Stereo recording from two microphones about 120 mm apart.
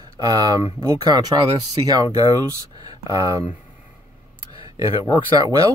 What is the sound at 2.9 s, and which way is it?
Speech, 30° right (ahead or behind).